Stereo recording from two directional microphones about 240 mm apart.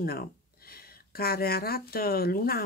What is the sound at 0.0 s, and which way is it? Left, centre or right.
Speech, left.